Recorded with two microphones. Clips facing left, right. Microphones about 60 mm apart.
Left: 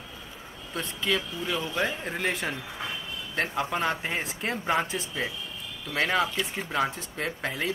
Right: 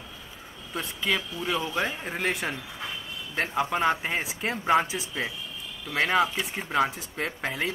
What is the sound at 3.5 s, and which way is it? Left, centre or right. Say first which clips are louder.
Speech: right 6 dB; centre.